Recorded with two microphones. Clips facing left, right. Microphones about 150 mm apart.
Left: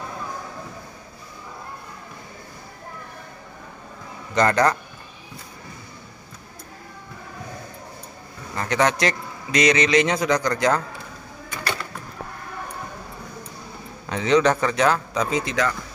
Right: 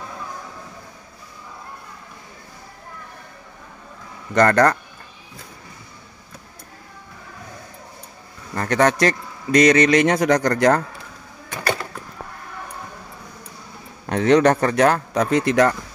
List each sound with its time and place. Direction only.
4.3 s a man's voice: 55° right (ahead or behind)
8.5 s a man's voice: 50° right (ahead or behind)
14.0 s a man's voice: 55° right (ahead or behind)